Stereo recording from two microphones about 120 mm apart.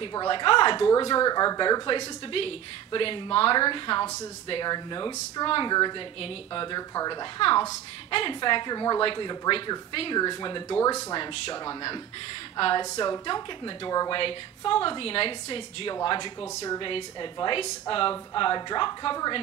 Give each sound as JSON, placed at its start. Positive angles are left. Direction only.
{"t": 0.1, "sound": "speech", "side_deg": 35}
{"t": 10.2, "sound": "speech", "side_deg": 35}
{"t": 10.8, "sound": "speech", "side_deg": 25}
{"t": 11.1, "sound": "speech", "side_deg": 40}
{"t": 12.9, "sound": "speech", "side_deg": 35}
{"t": 14.2, "sound": "speech", "side_deg": 45}